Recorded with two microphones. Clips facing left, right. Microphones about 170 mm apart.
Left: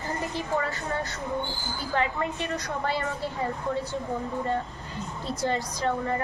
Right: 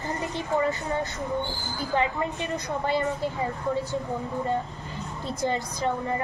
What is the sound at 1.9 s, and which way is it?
Speech, 15° right (ahead or behind).